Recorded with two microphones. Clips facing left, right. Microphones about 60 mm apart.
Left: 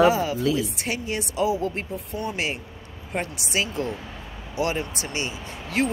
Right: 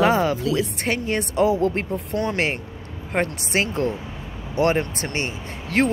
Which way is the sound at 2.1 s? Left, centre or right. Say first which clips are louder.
Right 5 dB; right.